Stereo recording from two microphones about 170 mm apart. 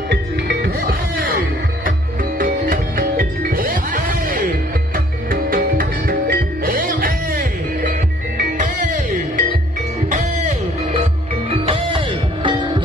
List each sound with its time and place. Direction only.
0.1 s music: 70° right (ahead or behind)
8.4 s music: 50° right (ahead or behind)
11.6 s music: 30° right (ahead or behind)